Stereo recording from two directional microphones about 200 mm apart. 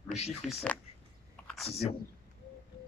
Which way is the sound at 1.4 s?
Centre (ahead or behind).